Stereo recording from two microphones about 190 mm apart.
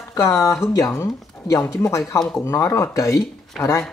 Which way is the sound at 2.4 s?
15° left (ahead or behind).